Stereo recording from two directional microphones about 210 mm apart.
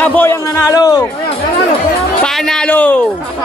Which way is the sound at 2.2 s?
Centre (ahead or behind).